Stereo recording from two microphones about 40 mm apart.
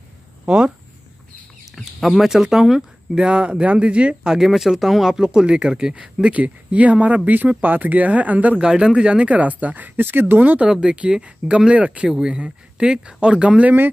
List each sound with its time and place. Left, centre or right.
0.5 s speech: right
2.0 s speech: centre
2.2 s speech: centre
3.2 s speech: right
4.3 s speech: centre
6.3 s speech: right
8.5 s speech: right
9.3 s speech: right
10.0 s speech: right
10.7 s speech: centre
11.2 s speech: right
12.1 s speech: right